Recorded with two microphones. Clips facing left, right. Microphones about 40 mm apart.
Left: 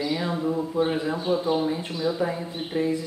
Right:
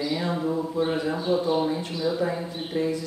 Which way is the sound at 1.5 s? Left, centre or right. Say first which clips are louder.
Even; centre.